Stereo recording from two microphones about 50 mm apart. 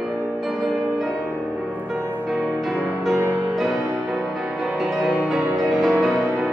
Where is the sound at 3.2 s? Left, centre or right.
Right.